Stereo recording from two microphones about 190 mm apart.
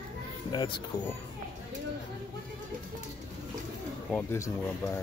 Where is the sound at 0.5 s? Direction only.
25° left (ahead or behind).